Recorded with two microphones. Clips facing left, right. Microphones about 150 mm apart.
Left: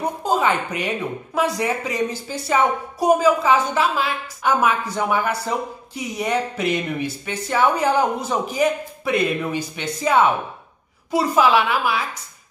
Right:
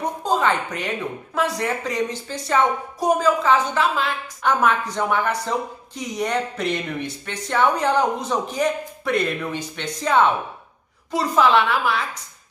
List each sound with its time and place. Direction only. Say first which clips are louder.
0.0 s speech: left 1 dB; 5° left (ahead or behind)